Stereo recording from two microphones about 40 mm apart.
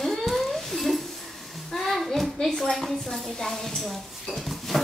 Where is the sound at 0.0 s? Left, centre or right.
Centre.